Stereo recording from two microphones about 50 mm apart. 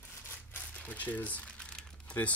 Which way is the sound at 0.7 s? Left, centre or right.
Left.